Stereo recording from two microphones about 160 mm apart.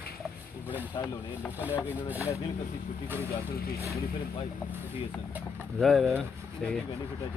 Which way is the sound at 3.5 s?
70° left (ahead or behind).